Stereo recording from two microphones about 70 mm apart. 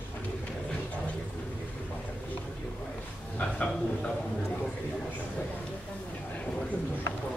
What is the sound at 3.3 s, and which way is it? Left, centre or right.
Speech, centre.